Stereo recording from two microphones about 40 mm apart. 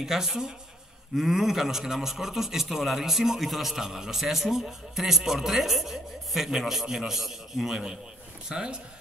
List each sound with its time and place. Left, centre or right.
0.0 s a man's voice: centre